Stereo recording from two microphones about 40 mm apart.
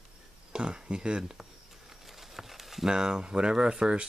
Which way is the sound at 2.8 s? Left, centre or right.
Centre.